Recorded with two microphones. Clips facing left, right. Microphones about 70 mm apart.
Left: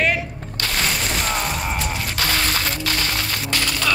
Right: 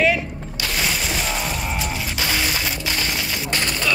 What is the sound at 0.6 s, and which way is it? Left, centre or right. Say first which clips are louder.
Music: left 1 dB; centre.